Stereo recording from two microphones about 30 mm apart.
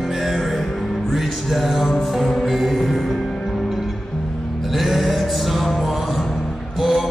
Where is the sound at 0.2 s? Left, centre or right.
Centre.